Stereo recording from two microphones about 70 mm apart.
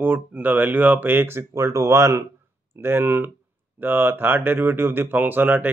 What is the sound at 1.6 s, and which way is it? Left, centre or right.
Speech, right.